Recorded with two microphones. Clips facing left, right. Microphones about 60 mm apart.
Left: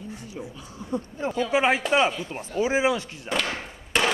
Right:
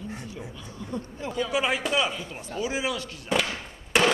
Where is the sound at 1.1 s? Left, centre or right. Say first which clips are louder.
Left 4 dB; left.